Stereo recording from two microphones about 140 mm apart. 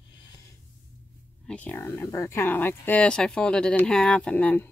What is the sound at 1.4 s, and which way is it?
Speech, 10° left (ahead or behind).